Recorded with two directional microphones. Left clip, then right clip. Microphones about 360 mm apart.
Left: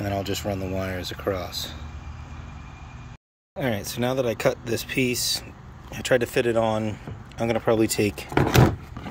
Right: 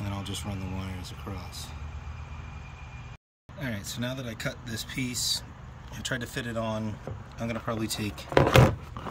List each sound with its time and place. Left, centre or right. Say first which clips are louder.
0.3 s speech: left 10 dB; centre
0.9 s speech: left 14 dB; right
3.5 s speech: left 9 dB; centre